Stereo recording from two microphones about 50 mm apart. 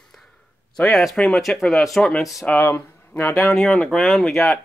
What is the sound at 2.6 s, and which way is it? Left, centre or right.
Speech, left.